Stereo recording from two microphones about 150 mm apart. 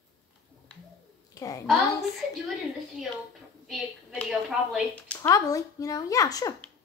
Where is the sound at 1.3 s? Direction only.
20° left (ahead or behind).